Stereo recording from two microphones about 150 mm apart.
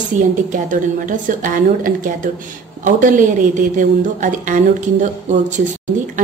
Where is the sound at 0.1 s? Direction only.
55° right (ahead or behind).